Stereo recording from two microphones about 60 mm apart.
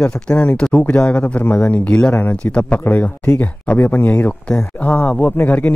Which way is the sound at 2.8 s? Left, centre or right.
Left.